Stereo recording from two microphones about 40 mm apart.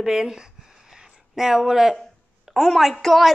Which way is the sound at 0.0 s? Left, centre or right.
Centre.